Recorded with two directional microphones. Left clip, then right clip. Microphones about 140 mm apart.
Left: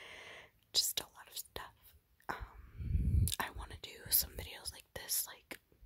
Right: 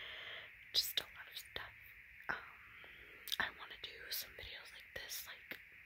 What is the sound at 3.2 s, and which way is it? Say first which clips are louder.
Whispering: right 1 dB; 25° left (ahead or behind).